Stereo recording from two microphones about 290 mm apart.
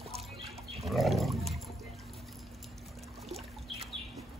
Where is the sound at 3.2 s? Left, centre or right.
Centre.